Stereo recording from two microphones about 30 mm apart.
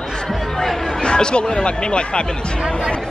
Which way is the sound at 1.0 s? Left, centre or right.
Left.